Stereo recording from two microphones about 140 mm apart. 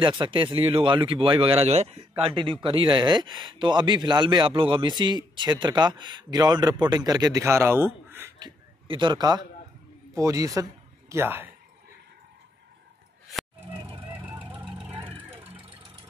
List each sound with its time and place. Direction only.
0.0 s speech: 35° right (ahead or behind); by 8.3 s 15° right (ahead or behind)
8.4 s a sound: 35° right (ahead or behind)
10.1 s a man's voice: 25° right (ahead or behind)
13.7 s vehicle: 35° right (ahead or behind)
14.0 s vehicle: 15° right (ahead or behind)
15.0 s vehicle: 40° right (ahead or behind)